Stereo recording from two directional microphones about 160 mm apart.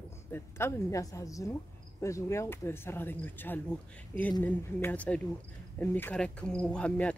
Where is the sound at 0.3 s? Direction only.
15° left (ahead or behind).